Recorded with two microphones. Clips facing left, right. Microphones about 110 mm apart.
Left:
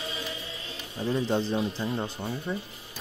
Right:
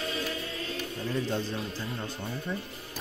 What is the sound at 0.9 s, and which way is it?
Speech, 15° left (ahead or behind).